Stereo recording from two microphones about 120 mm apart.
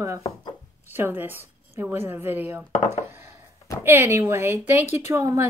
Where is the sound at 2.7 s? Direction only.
80° left.